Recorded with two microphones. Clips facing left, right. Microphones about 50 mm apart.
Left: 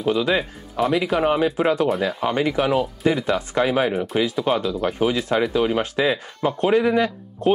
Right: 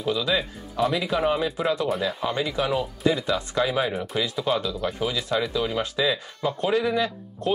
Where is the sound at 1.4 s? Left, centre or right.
Left.